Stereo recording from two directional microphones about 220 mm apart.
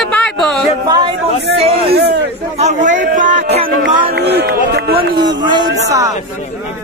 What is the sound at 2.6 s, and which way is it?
Speech, 30° right (ahead or behind).